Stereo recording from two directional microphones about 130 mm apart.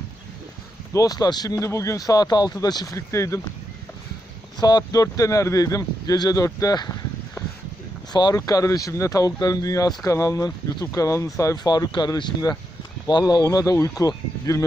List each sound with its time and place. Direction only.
0.9 s speech: 30° left (ahead or behind)
4.6 s speech: 30° left (ahead or behind)
8.1 s speech: 30° left (ahead or behind)